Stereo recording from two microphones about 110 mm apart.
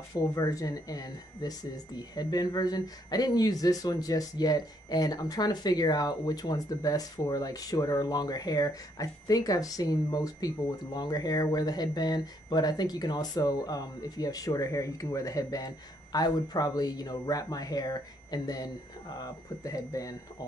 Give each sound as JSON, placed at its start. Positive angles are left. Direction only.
{"t": 0.1, "sound": "speech", "side_deg": 30}